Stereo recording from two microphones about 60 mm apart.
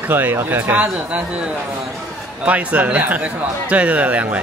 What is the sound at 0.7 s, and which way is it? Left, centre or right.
Speech, right.